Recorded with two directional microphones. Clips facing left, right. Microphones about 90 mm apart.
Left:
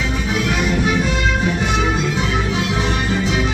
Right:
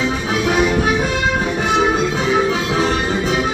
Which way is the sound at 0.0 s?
35° right (ahead or behind).